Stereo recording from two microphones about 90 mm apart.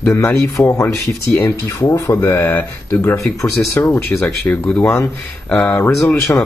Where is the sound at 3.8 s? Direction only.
25° left (ahead or behind).